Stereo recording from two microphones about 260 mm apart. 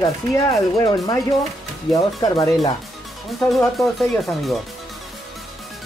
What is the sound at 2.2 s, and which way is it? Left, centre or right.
Speech, centre.